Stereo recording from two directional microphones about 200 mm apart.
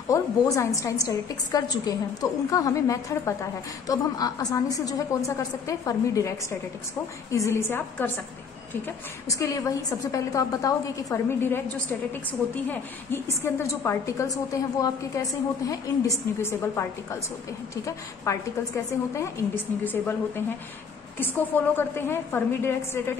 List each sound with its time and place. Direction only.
0.1 s a woman's voice: 15° left (ahead or behind)